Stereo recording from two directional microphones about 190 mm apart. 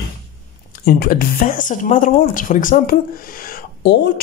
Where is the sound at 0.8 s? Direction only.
50° left (ahead or behind).